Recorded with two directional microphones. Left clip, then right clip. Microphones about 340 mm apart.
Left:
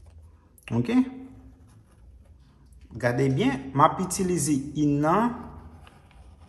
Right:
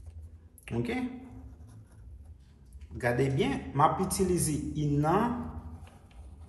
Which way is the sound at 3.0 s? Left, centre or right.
Centre.